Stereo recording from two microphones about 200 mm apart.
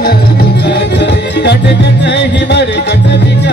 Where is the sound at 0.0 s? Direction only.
55° left (ahead or behind).